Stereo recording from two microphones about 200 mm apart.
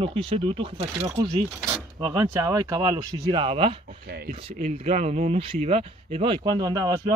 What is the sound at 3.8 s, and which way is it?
Speech, 50° right (ahead or behind).